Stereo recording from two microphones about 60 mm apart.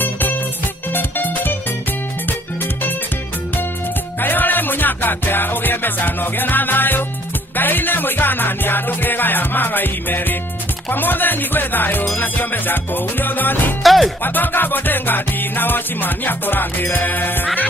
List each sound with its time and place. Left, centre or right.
0.0 s music: left
4.2 s music: left
13.8 s speech: centre
14.2 s music: left